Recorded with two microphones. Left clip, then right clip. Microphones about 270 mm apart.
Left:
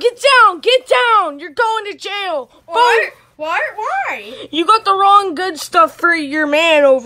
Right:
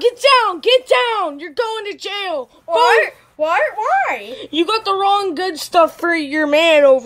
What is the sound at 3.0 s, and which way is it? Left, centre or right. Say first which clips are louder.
Speech: right 2 dB; right.